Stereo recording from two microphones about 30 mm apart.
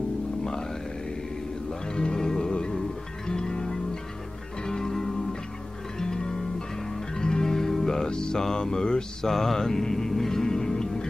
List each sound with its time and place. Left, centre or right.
0.4 s grunt: centre
1.9 s music: left
9.3 s speech: centre